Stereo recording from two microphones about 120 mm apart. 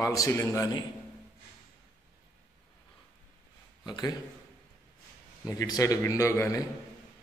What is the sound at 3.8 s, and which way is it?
Speech, 35° left (ahead or behind).